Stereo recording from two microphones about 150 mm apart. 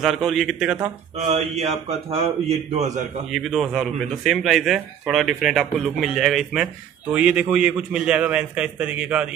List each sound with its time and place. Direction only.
0.0 s speech: centre (ahead or behind)
1.3 s a man's voice: 45° right (ahead or behind)
3.3 s speech: centre (ahead or behind)